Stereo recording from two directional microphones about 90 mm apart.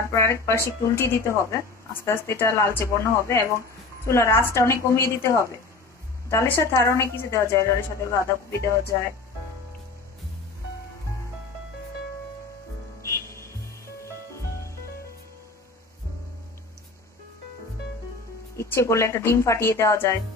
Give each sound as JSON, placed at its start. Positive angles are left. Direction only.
{"t": 0.0, "sound": "speech", "side_deg": 30}
{"t": 6.3, "sound": "speech", "side_deg": 20}
{"t": 6.6, "sound": "speech", "side_deg": 35}
{"t": 13.0, "sound": "music", "side_deg": 30}
{"t": 18.6, "sound": "speech", "side_deg": 30}